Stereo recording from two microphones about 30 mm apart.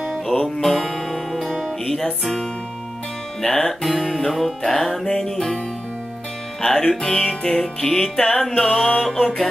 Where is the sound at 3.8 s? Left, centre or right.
Centre.